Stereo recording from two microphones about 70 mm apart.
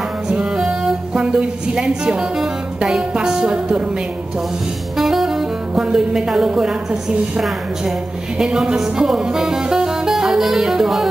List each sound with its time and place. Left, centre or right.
0.3 s music: centre
4.9 s speech: centre
8.4 s music: centre